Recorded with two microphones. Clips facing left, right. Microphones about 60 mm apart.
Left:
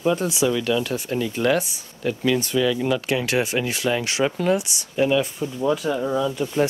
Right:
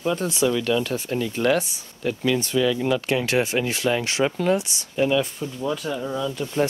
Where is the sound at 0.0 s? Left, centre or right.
Centre.